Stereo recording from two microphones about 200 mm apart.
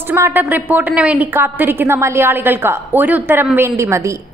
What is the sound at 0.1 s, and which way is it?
A woman's voice, 10° right (ahead or behind).